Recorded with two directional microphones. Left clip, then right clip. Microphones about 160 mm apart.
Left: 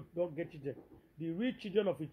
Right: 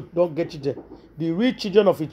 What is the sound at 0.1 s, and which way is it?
Speech, 15° right (ahead or behind).